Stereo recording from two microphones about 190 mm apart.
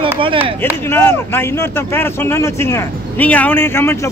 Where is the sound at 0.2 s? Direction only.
25° right (ahead or behind).